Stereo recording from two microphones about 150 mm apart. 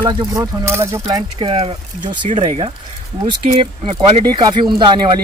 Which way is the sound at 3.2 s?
30° right (ahead or behind).